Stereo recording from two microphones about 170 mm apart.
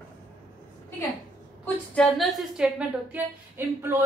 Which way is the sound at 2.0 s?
Centre (ahead or behind).